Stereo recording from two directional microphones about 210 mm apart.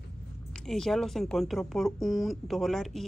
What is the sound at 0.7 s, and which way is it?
Speech, centre (ahead or behind).